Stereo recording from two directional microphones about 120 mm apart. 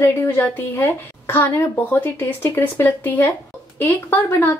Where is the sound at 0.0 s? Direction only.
15° left (ahead or behind).